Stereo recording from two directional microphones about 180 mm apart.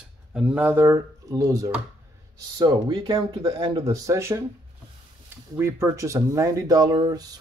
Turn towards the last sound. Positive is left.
turn(degrees=-25)  # may be behind; listen again after turning